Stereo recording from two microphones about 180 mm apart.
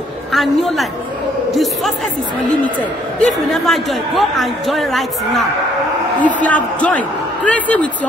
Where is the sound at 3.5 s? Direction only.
Centre (ahead or behind).